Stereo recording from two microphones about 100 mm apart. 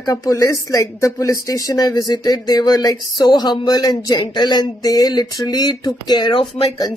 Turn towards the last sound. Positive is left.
turn(degrees=55)  # may be behind; listen again after turning